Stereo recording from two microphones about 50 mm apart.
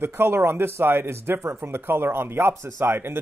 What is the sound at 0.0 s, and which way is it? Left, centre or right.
Speech, right.